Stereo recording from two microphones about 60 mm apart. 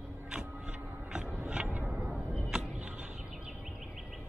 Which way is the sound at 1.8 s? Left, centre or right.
Right.